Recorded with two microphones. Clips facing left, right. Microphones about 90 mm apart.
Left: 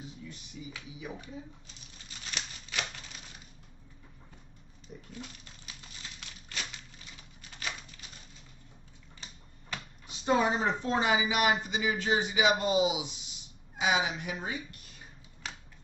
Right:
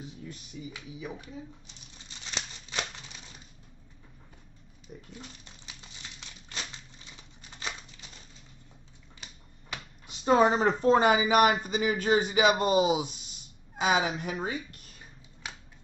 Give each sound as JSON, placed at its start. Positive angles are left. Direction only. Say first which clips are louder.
{"t": 2.0, "sound": "scissors", "louder": "right 2 dB", "side_deg": -25}
{"t": 4.9, "sound": "speech", "louder": "right 1 dB", "side_deg": -35}
{"t": 5.7, "sound": "a sound", "louder": "even", "side_deg": -20}
{"t": 10.2, "sound": "speech", "louder": "right 5 dB", "side_deg": -40}